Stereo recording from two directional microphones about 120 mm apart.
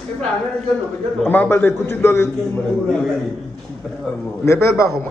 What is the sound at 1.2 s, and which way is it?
A man's voice, 15° left (ahead or behind).